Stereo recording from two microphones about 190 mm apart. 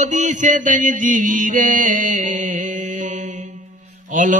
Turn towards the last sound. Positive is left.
turn(degrees=-40)  # may be behind; listen again after turning